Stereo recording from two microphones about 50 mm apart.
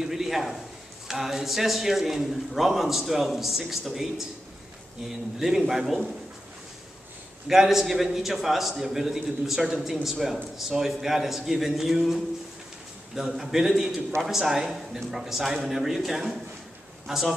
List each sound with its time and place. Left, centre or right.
0.0 s a sound: centre
1.0 s a man's voice: centre
7.4 s a man's voice: centre